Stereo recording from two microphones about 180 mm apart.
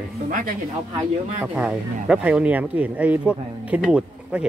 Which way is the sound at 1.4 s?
5° right (ahead or behind).